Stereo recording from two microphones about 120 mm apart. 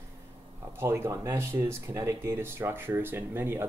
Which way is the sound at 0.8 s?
20° right (ahead or behind).